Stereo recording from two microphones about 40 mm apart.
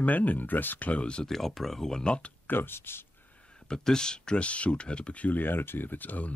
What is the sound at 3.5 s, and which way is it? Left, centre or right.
Speech, centre.